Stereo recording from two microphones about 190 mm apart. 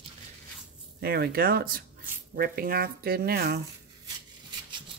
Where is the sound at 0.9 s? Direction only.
55° right (ahead or behind).